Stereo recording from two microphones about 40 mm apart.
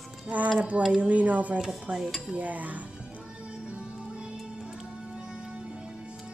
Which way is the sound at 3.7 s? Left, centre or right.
Right.